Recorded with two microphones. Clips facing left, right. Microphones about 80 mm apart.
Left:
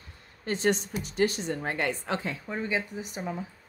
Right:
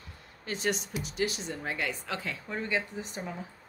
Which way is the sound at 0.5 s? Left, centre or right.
Left.